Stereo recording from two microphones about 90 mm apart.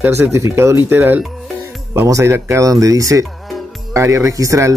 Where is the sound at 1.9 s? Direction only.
35° right (ahead or behind).